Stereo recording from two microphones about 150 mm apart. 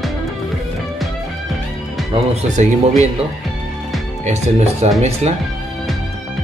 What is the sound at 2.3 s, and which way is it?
Speech, 45° right (ahead or behind).